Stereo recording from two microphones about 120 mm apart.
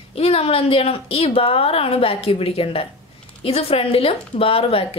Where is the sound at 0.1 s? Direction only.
55° left (ahead or behind).